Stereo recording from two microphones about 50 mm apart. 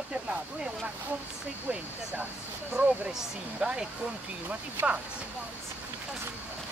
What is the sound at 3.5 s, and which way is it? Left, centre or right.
Speech, right.